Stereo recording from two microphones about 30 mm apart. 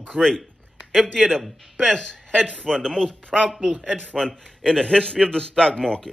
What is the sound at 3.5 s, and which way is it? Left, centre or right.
Speech, centre.